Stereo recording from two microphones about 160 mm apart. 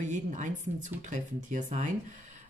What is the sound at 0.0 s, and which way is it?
Speech, 50° right (ahead or behind).